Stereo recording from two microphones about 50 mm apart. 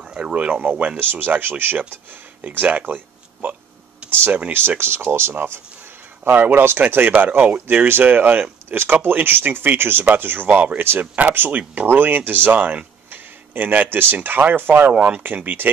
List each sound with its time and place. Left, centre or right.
0.0 s a sound: centre
0.3 s speech: right
4.0 s a sound: right
4.5 s speech: right
7.1 s speech: right
7.3 s speech: right
14.9 s speech: right
15.2 s speech: right